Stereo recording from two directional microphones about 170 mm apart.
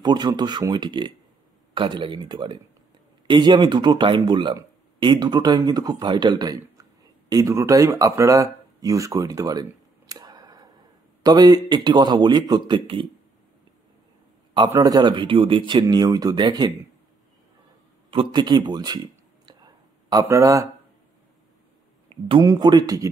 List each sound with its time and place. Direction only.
0.0 s speech: 25° right (ahead or behind)
6.6 s a sound: 20° right (ahead or behind)
11.2 s speech: 20° right (ahead or behind)
14.7 s speech: 20° right (ahead or behind)
18.1 s speech: 30° right (ahead or behind)
19.4 s whispering: 25° right (ahead or behind)
22.1 s speech: 25° right (ahead or behind)